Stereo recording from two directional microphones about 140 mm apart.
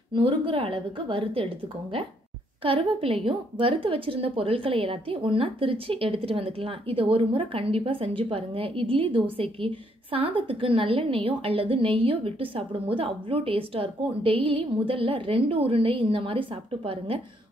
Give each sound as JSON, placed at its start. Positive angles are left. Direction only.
{"t": 0.1, "sound": "a woman's voice", "side_deg": -35}